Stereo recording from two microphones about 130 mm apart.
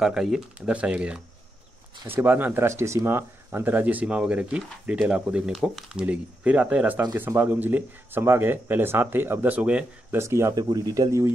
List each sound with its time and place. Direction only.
0.0 s speech: 5° right (ahead or behind)
10.1 s speech: 20° right (ahead or behind)